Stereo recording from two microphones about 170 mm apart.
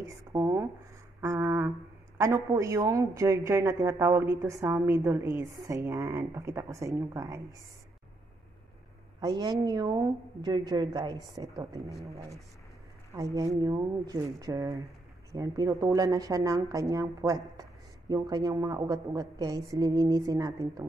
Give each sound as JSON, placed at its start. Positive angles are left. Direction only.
{"t": 0.0, "sound": "a sound", "side_deg": -20}
{"t": 2.1, "sound": "a woman's voice", "side_deg": -15}
{"t": 9.2, "sound": "speech", "side_deg": -25}